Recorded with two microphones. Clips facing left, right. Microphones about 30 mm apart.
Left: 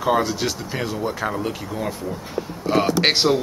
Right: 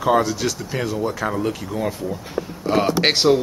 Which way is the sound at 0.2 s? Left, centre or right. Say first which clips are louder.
Right 1 dB; left.